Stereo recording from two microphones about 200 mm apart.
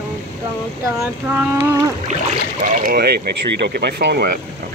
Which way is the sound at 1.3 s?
10° right (ahead or behind).